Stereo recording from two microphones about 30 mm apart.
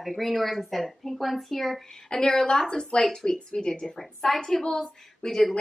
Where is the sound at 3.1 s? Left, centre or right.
Centre.